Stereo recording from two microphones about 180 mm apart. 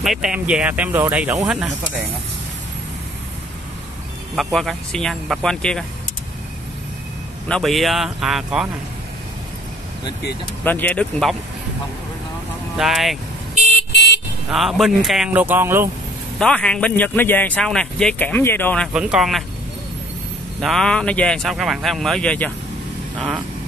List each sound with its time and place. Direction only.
0.0 s speech: centre (ahead or behind)
4.4 s speech: centre (ahead or behind)
7.4 s speech: centre (ahead or behind)
10.6 s a man's voice: 10° left (ahead or behind)
12.7 s speech: centre (ahead or behind)
13.9 s vehicle: 70° left (ahead or behind)
14.5 s speech: centre (ahead or behind)
16.3 s a man's voice: 5° left (ahead or behind)
18.9 s speech: 5° right (ahead or behind)
20.6 s speech: 5° left (ahead or behind)